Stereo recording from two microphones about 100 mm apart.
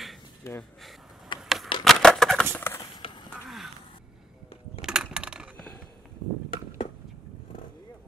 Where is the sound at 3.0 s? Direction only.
65° left (ahead or behind).